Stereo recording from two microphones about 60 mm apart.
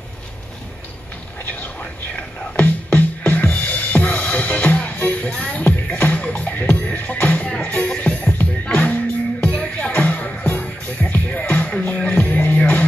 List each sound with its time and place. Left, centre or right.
1.4 s music: left